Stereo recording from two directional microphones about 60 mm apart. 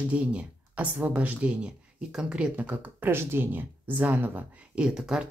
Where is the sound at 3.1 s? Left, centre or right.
Right.